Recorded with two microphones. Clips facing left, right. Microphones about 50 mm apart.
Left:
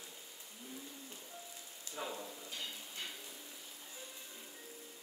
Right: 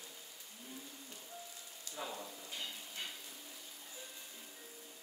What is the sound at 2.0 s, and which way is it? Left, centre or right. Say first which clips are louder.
Frying: left 2 dB; centre.